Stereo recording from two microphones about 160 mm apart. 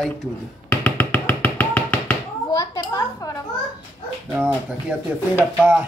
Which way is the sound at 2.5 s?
25° left (ahead or behind).